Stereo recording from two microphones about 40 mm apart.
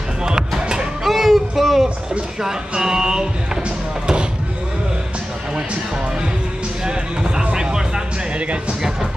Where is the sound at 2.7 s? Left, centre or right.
Centre.